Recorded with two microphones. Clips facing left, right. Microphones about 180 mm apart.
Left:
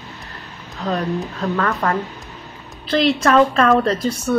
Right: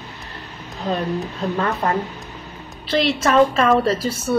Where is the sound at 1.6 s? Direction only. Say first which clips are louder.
Left 1 dB; 20° right (ahead or behind).